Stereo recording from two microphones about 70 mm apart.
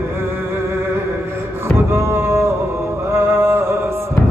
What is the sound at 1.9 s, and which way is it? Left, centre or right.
Music, right.